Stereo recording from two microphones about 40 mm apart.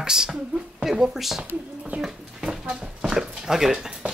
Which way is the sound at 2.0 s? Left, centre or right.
Centre.